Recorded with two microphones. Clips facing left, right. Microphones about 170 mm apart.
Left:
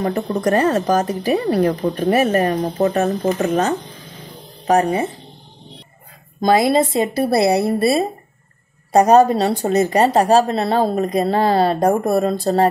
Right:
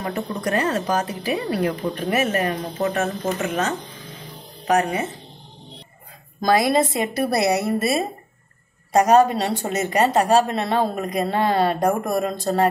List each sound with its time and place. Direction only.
0.0 s a woman's voice: 35° left (ahead or behind)
6.4 s a woman's voice: 25° left (ahead or behind)